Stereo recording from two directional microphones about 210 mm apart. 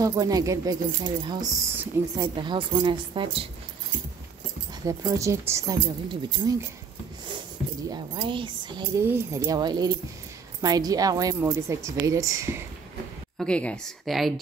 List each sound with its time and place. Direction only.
0.0 s a woman's voice: 15° right (ahead or behind)
4.8 s a woman's voice: 15° right (ahead or behind)
7.9 s a woman's voice: 25° right (ahead or behind)
13.4 s a woman's voice: 5° left (ahead or behind)